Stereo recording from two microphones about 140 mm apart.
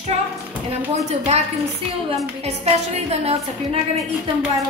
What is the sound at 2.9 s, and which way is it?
Speech, 50° right (ahead or behind).